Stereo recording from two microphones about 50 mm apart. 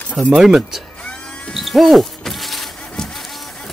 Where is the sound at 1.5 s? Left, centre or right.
Centre.